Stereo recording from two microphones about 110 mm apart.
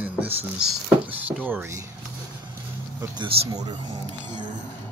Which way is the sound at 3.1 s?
40° right (ahead or behind).